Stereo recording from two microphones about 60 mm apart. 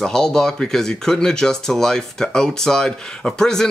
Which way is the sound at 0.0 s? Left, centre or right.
Centre.